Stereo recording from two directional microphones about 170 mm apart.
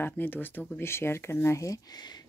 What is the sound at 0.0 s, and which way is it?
Speech, 10° left (ahead or behind).